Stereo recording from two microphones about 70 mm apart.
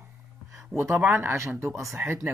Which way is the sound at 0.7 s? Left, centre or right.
Right.